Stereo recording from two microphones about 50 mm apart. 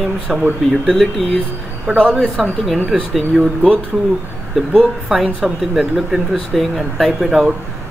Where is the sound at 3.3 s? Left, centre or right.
Right.